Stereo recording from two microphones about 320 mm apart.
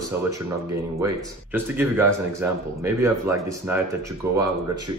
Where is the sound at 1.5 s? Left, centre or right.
Centre.